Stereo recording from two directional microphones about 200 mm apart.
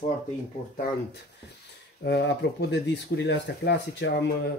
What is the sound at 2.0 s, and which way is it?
Speech, 55° left (ahead or behind).